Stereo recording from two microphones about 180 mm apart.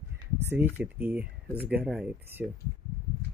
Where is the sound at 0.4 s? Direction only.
15° right (ahead or behind).